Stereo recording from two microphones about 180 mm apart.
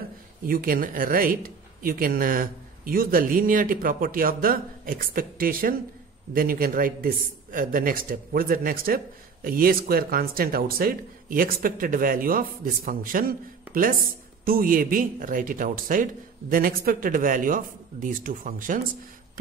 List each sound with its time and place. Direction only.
0.5 s a man's voice: 55° right (ahead or behind)